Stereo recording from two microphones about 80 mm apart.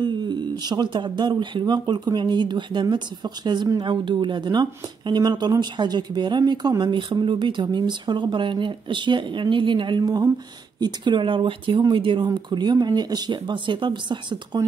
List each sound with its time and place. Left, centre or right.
0.0 s speech: right
6.8 s speech: right
10.8 s speech: right
12.4 s speech: right